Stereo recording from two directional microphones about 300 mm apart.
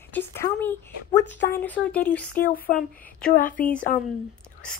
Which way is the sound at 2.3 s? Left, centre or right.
Left.